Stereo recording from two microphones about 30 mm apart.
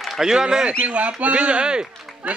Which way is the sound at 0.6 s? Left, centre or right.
Right.